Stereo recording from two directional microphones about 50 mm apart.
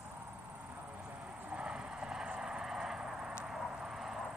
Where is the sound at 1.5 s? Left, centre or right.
Right.